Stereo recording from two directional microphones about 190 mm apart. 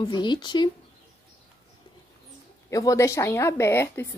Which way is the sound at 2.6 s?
15° left (ahead or behind).